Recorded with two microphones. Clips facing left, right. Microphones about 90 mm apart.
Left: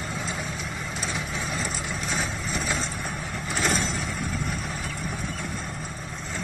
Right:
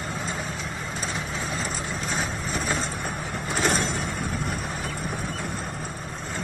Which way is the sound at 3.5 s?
50° right (ahead or behind).